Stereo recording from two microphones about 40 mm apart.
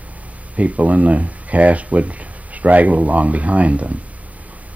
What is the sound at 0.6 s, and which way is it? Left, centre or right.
Speech, right.